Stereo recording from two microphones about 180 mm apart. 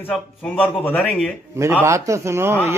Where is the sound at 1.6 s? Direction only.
15° right (ahead or behind).